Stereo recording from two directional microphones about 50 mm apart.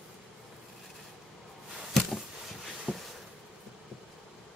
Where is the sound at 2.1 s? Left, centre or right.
Centre.